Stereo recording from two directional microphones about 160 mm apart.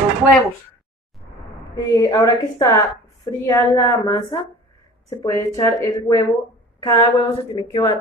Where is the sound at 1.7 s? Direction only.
25° left (ahead or behind).